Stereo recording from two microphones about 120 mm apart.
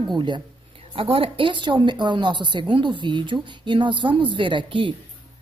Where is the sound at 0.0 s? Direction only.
40° right (ahead or behind).